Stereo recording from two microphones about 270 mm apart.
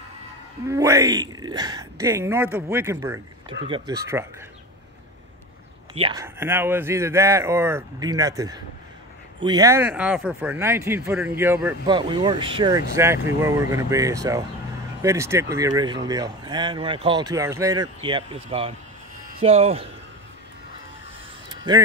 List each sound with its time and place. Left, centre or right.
0.7 s speech: centre
5.9 s speech: centre
21.5 s a sound: centre